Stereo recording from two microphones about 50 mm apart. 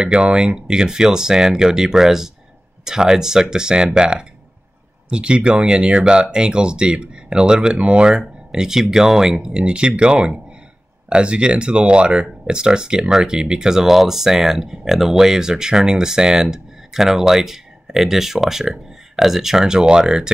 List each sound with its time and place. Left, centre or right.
0.0 s speech: centre